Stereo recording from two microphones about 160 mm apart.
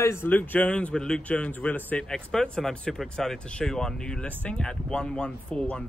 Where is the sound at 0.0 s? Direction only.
15° left (ahead or behind).